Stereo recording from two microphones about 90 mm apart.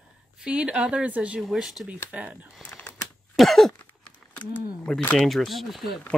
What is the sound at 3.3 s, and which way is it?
Speech, centre (ahead or behind).